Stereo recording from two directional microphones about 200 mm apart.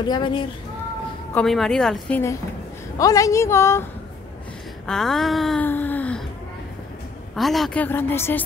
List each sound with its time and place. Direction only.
0.0 s a woman's voice: 20° left (ahead or behind)
1.3 s a woman's voice: centre (ahead or behind)
4.8 s speech: centre (ahead or behind)
7.3 s a woman's voice: centre (ahead or behind)